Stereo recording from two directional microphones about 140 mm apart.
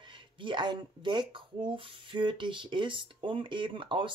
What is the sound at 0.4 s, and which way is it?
Speech, 35° right (ahead or behind).